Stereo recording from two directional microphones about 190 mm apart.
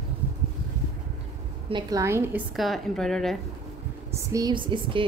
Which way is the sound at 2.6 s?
Centre (ahead or behind).